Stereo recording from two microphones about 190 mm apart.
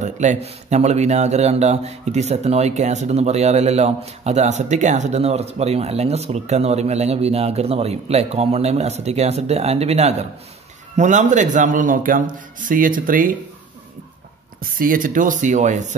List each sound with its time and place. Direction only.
0.0 s a man's voice: 40° right (ahead or behind)
14.8 s speech: 45° right (ahead or behind)